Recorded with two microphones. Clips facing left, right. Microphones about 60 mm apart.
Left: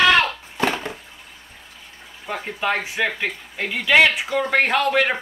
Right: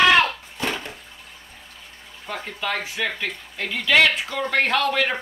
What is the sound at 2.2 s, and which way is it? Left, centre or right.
Speech, centre.